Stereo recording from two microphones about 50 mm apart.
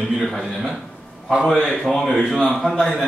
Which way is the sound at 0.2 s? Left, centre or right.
Centre.